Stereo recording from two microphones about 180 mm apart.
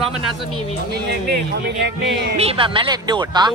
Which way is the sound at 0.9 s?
60° right (ahead or behind).